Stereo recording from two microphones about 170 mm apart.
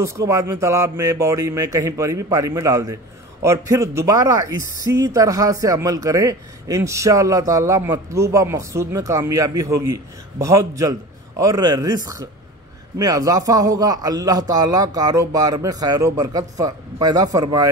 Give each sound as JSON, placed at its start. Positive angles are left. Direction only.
{"t": 0.0, "sound": "speech", "side_deg": -20}